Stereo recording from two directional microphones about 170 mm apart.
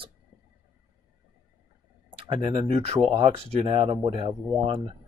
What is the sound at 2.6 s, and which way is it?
Speech, 40° right (ahead or behind).